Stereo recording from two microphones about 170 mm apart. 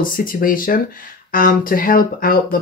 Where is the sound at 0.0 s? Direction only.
55° left (ahead or behind).